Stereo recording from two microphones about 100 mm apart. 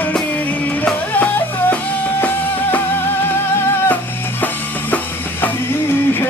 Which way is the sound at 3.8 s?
20° left (ahead or behind).